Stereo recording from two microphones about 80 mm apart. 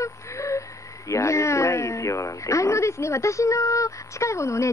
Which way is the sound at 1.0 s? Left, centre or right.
Left.